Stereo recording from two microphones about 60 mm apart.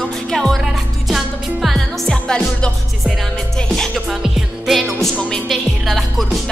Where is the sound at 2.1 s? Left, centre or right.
Centre.